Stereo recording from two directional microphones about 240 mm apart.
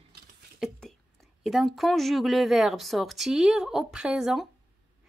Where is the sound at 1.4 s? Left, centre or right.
Centre.